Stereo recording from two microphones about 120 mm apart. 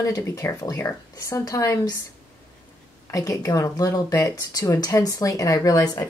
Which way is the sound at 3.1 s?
30° left (ahead or behind).